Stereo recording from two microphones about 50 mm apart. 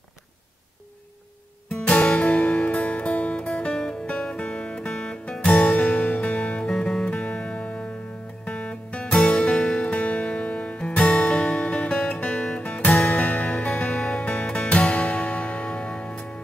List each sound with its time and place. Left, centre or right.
1.7 s music: centre
6.7 s music: centre
12.3 s music: centre
13.1 s music: left